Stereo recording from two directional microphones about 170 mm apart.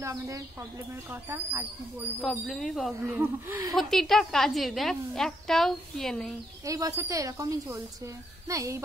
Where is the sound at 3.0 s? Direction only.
10° right (ahead or behind).